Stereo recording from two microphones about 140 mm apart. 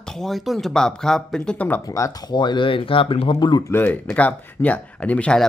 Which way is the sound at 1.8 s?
25° left (ahead or behind).